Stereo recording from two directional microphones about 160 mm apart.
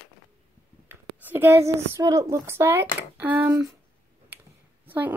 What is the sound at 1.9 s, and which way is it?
Speech, 20° right (ahead or behind).